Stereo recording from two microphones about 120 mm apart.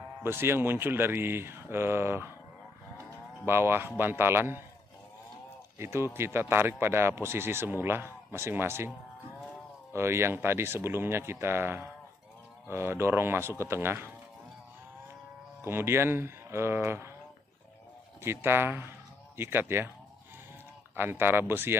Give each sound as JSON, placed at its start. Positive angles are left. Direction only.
{"t": 0.2, "sound": "speech", "side_deg": -20}
{"t": 3.4, "sound": "speech", "side_deg": -20}
{"t": 5.8, "sound": "speech", "side_deg": -20}
{"t": 9.9, "sound": "speech", "side_deg": -20}
{"t": 15.6, "sound": "speech", "side_deg": -20}
{"t": 18.2, "sound": "speech", "side_deg": -20}
{"t": 20.9, "sound": "speech", "side_deg": -20}